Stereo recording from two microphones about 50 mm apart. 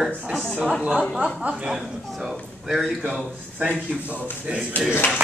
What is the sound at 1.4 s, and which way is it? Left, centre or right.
Speech, centre.